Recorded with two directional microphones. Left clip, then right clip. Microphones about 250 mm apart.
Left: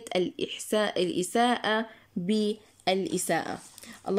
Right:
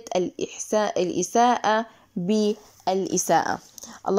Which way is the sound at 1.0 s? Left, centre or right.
Left.